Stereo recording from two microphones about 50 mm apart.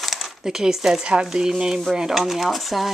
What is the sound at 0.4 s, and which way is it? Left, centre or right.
Speech, centre.